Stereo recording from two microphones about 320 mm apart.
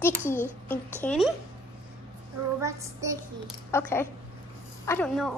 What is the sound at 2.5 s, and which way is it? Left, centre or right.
Child singing, centre.